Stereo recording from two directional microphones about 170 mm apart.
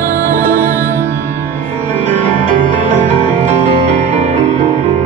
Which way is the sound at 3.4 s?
40° right (ahead or behind).